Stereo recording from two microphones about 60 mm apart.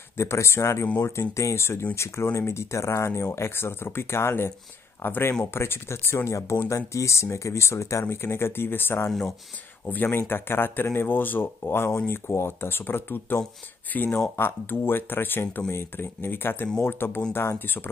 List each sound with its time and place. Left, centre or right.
0.2 s speech: left